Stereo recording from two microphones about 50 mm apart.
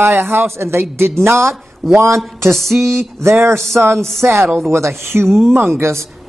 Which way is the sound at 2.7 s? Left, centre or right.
Right.